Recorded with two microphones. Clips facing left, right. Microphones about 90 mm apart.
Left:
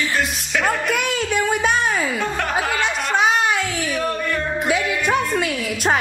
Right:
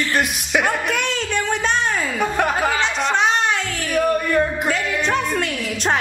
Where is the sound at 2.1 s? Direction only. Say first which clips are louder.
Right 3 dB; 15° right (ahead or behind).